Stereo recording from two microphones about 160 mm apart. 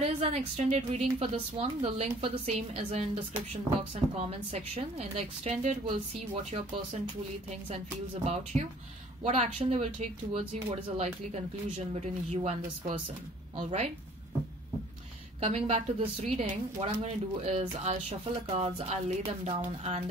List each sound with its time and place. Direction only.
0.0 s a woman's voice: 40° right (ahead or behind)
7.7 s a woman's voice: 40° right (ahead or behind)
13.6 s speech: 45° right (ahead or behind)
15.4 s a woman's voice: 35° right (ahead or behind)